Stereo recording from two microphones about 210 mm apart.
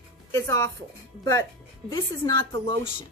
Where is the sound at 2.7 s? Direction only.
25° left (ahead or behind).